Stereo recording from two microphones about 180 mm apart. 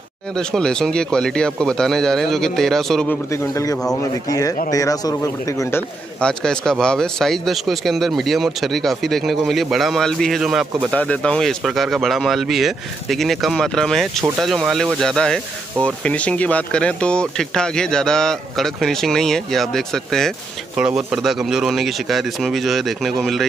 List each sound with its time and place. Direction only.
0.4 s a man's voice: 5° left (ahead or behind)
3.3 s a man's voice: 15° left (ahead or behind); by 23.4 s centre (ahead or behind)